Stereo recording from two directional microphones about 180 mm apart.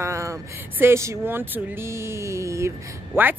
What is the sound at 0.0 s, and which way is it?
Speech, 15° right (ahead or behind).